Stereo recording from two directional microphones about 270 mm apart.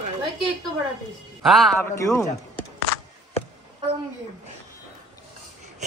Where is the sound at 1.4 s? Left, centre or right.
Centre.